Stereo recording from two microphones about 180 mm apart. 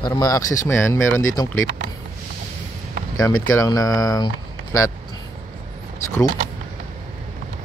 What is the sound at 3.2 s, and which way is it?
Speech, 15° left (ahead or behind).